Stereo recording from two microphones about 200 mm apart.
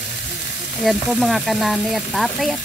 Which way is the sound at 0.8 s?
Centre (ahead or behind).